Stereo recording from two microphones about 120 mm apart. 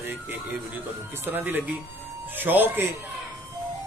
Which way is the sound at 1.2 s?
15° right (ahead or behind).